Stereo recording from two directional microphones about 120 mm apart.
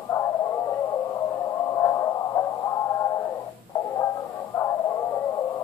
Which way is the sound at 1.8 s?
25° left (ahead or behind).